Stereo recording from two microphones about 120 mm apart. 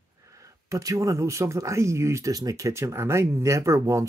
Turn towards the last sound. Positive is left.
turn(degrees=-25)  # may be behind; listen again after turning